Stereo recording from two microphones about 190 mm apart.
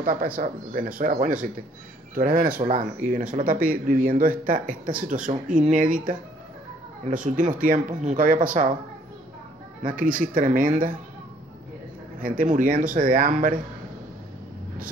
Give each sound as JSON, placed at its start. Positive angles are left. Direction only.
{"t": 0.0, "sound": "speech", "side_deg": -50}
{"t": 9.8, "sound": "speech", "side_deg": -45}
{"t": 12.2, "sound": "speech", "side_deg": -50}